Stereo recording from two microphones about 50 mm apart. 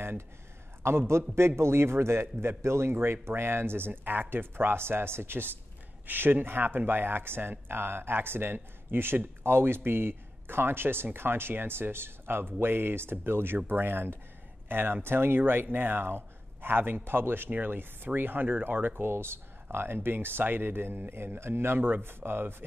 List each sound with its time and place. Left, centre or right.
0.8 s a man's voice: right
6.0 s speech: right